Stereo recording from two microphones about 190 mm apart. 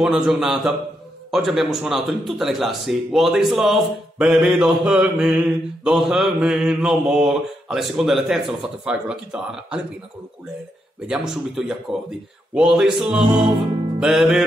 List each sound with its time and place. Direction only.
0.0 s speech: centre (ahead or behind)
11.1 s speech: centre (ahead or behind)
13.9 s music: centre (ahead or behind)